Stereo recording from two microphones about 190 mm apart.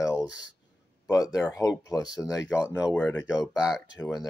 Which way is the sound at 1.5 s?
20° left (ahead or behind).